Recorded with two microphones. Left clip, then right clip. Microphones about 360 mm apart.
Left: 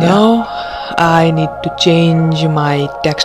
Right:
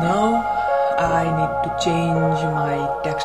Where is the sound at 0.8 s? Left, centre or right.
Left.